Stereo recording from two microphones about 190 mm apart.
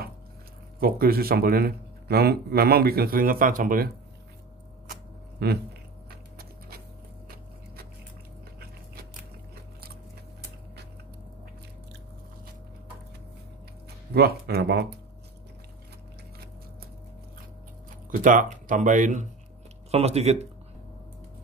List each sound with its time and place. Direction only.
0.7 s speech: 50° right (ahead or behind)
5.4 s a sound: 60° right (ahead or behind)
14.1 s speech: 55° right (ahead or behind)
18.2 s speech: 45° right (ahead or behind)